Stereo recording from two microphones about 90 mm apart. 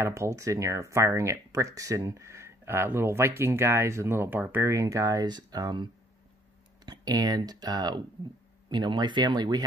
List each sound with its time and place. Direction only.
0.0 s speech: 35° right (ahead or behind)
5.2 s speech: 50° right (ahead or behind)
6.9 s speech: 45° right (ahead or behind)